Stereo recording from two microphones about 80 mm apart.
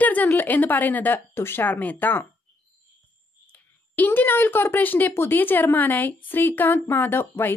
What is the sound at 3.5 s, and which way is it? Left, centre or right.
A woman's voice, left.